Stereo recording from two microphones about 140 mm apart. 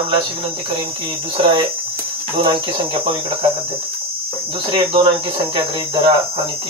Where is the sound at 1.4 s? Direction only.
35° right (ahead or behind).